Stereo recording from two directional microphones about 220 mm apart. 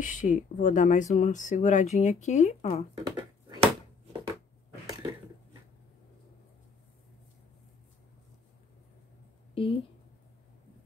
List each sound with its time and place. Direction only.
0.0 s speech: 35° left (ahead or behind)
2.9 s a sound: 20° right (ahead or behind)
9.6 s speech: 25° left (ahead or behind)